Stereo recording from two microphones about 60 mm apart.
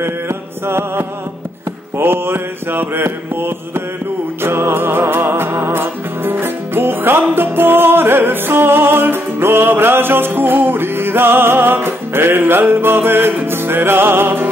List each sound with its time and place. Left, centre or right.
0.7 s music: right
2.0 s mantra: right
4.4 s music: right